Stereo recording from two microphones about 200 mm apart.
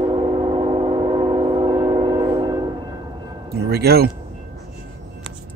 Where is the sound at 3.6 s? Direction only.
50° right (ahead or behind).